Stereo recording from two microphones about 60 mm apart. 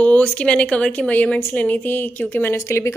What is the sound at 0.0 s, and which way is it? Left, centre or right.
A woman's voice, left.